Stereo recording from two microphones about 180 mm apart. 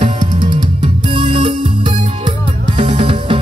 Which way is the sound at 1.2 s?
30° right (ahead or behind).